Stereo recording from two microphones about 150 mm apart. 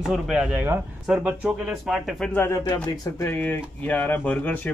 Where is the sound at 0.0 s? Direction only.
Centre (ahead or behind).